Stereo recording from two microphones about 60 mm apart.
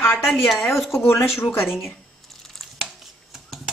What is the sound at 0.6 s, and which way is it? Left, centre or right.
Speech, centre.